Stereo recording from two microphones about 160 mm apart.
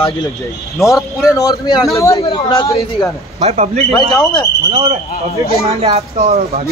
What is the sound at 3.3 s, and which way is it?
Speech, 45° right (ahead or behind).